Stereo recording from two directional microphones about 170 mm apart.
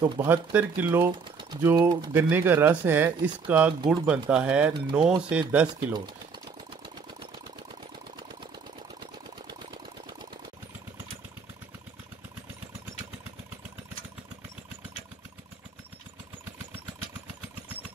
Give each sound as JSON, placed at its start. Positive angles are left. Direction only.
{"t": 0.0, "sound": "speech", "side_deg": -25}
{"t": 0.3, "sound": "speech", "side_deg": -10}
{"t": 1.8, "sound": "speech", "side_deg": -25}
{"t": 2.1, "sound": "speech", "side_deg": -10}